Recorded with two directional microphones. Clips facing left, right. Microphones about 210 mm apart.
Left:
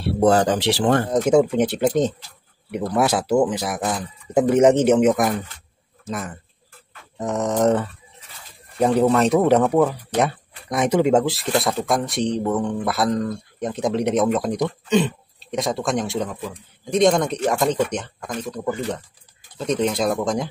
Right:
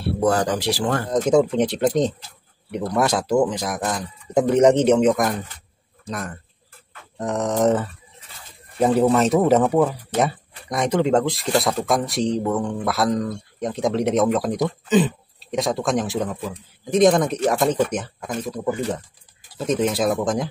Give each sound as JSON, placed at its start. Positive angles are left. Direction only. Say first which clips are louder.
{"t": 0.2, "sound": "speech", "louder": "left 4 dB", "side_deg": 25}
{"t": 1.0, "sound": "speech", "louder": "right 3 dB", "side_deg": 5}